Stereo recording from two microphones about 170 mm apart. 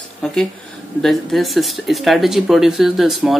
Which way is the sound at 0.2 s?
5° left (ahead or behind).